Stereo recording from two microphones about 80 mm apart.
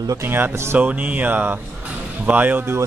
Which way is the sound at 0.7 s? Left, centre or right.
Centre.